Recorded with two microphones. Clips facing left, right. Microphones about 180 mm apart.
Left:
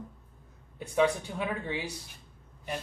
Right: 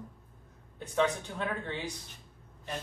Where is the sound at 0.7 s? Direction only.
10° left (ahead or behind).